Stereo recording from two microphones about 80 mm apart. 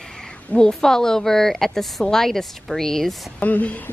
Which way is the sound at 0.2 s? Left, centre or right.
Centre.